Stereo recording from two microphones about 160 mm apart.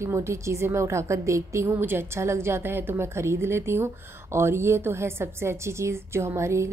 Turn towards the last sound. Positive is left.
turn(degrees=-15)  # may be behind; listen again after turning